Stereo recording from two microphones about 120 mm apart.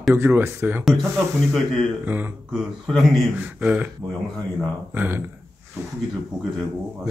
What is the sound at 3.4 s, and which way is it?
Speech, 15° right (ahead or behind).